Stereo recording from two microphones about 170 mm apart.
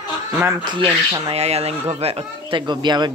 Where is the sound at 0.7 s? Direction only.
25° right (ahead or behind).